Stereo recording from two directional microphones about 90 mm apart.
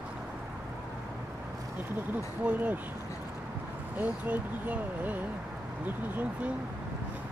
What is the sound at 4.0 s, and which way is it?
Speech, 20° right (ahead or behind).